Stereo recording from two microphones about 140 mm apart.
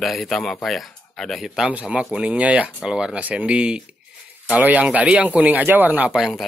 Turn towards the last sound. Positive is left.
turn(degrees=-5)  # may be behind; listen again after turning